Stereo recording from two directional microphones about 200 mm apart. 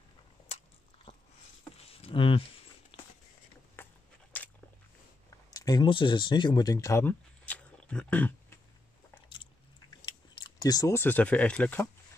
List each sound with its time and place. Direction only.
1.9 s a sound: 30° left (ahead or behind)
3.8 s biting: 10° left (ahead or behind)
5.5 s speech: 20° left (ahead or behind)
10.0 s speech: 20° left (ahead or behind)